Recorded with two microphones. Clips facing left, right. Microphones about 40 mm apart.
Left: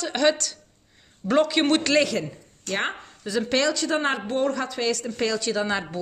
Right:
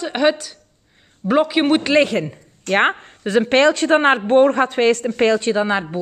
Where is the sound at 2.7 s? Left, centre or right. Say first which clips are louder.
Right 11 dB; right.